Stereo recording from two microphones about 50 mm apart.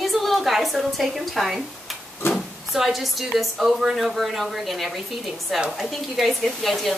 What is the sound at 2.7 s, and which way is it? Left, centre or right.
A woman's voice, centre.